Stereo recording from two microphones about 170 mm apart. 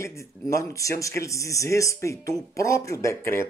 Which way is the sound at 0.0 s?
15° left (ahead or behind).